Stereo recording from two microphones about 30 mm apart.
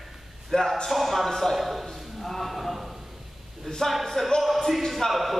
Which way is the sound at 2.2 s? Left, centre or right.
Centre.